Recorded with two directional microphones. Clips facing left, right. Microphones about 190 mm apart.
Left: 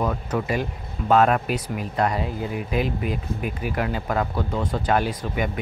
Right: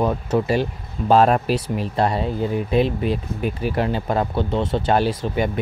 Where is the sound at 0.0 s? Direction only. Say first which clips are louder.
Right 5 dB; 30° right (ahead or behind).